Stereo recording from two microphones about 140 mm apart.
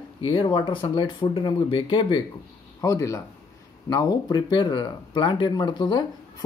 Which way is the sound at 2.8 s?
25° left (ahead or behind).